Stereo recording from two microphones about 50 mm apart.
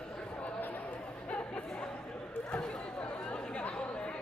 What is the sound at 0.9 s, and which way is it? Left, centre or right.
Chatter, left.